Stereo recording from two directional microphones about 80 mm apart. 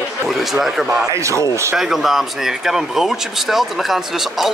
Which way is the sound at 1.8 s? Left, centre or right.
Centre.